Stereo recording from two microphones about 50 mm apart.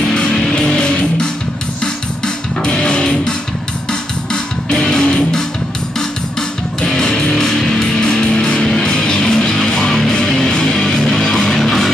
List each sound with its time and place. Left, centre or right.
0.3 s music: centre
0.6 s music: centre
6.8 s music: centre